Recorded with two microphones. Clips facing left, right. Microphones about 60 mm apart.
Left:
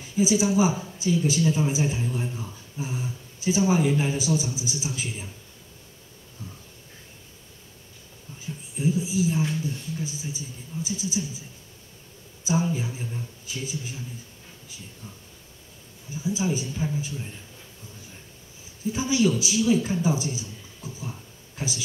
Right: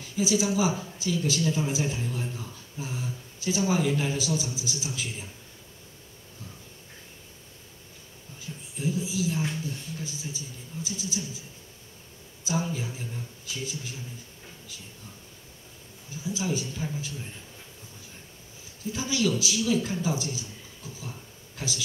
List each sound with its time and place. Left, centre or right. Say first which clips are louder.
0.0 s speech: left 4 dB; left
8.7 s a sound: left 4 dB; left
9.6 s speech: left 4 dB; centre
12.4 s speech: left 4 dB; centre
16.2 s speech: left 3 dB; left
18.9 s a man's voice: left 4 dB; left